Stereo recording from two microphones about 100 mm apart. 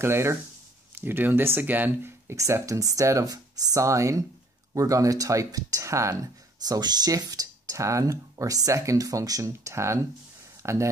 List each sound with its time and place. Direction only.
0.0 s speech: 25° right (ahead or behind)
6.6 s speech: 40° right (ahead or behind)